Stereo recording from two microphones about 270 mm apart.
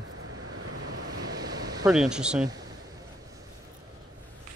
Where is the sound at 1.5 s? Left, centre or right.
Centre.